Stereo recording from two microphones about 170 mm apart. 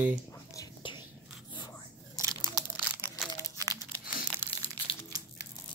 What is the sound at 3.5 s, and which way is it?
Crumpling, 20° right (ahead or behind).